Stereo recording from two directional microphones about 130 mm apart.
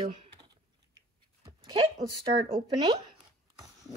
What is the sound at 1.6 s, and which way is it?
A woman's voice, 40° right (ahead or behind).